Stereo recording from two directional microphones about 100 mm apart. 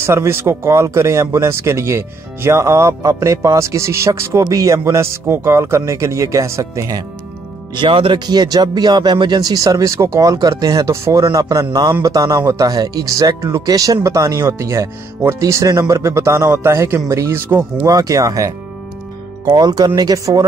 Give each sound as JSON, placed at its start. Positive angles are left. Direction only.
{"t": 0.0, "sound": "speech", "side_deg": -25}
{"t": 7.7, "sound": "speech", "side_deg": -55}
{"t": 8.3, "sound": "speech", "side_deg": -40}
{"t": 19.5, "sound": "speech", "side_deg": -45}